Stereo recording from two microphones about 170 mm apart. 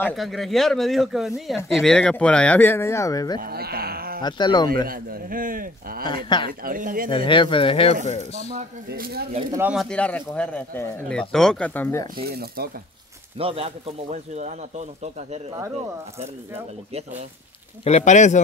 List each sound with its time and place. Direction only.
0.1 s speech: centre (ahead or behind); by 3.3 s 20° left (ahead or behind)
3.3 s sheep: 60° right (ahead or behind)
4.2 s speech: 25° left (ahead or behind)
4.8 s a man's voice: 60° right (ahead or behind)
6.0 s speech: 25° left (ahead or behind)
6.6 s a man's voice: 55° right (ahead or behind)
7.1 s speech: 30° left (ahead or behind)
8.3 s a man's voice: 50° right (ahead or behind)
9.5 s speech: 10° right (ahead or behind)
9.8 s speech: 5° left (ahead or behind)
12.2 s a man's voice: 65° right (ahead or behind)
13.4 s speech: 35° right (ahead or behind)
17.8 s a man's voice: 45° left (ahead or behind)